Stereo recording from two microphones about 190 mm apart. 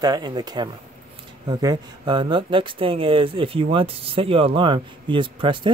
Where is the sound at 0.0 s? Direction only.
20° right (ahead or behind).